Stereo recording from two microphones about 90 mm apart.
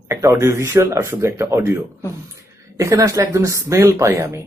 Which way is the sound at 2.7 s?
35° right (ahead or behind).